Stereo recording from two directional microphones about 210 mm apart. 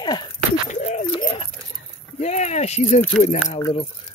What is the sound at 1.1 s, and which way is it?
Speech, 30° left (ahead or behind).